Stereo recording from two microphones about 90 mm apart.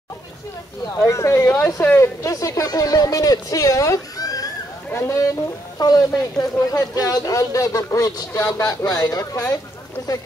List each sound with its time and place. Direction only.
1.0 s speech: 35° left (ahead or behind)
4.9 s speech: 30° left (ahead or behind)
5.8 s speech: 45° left (ahead or behind)